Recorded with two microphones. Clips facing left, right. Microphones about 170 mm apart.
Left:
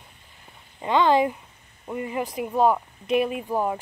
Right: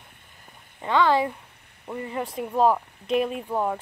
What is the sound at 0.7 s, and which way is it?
Speech, 20° left (ahead or behind).